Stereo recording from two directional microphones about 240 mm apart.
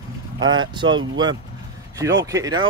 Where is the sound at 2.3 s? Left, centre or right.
Centre.